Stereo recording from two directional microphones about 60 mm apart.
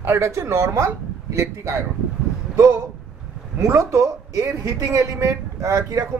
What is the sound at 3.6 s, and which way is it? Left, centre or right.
Speech, right.